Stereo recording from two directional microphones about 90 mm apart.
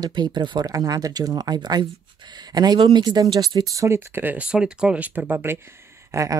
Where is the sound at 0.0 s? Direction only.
55° right (ahead or behind).